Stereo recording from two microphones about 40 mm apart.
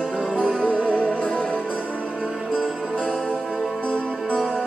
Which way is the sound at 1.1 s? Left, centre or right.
Left.